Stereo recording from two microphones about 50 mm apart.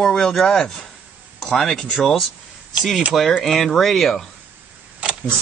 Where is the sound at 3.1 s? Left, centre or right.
Centre.